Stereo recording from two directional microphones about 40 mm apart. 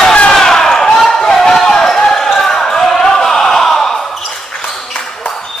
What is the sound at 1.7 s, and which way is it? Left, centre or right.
Basketball bounce, centre.